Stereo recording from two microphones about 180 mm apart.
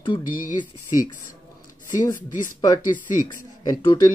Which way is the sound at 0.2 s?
50° left (ahead or behind).